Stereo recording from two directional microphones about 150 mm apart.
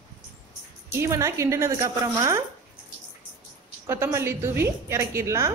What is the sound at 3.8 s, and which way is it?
A woman's voice, 20° right (ahead or behind).